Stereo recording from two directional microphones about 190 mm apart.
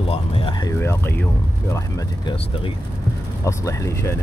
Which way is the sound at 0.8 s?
10° left (ahead or behind).